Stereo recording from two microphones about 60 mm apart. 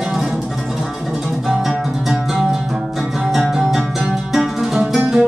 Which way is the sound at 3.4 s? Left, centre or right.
Centre.